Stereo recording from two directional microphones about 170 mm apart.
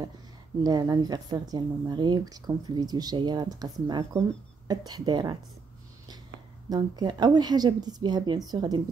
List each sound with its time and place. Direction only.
0.7 s a woman's voice: 25° right (ahead or behind)
6.7 s a woman's voice: 25° right (ahead or behind)